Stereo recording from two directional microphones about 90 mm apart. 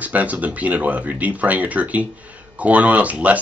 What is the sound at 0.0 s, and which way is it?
Speech, 15° right (ahead or behind).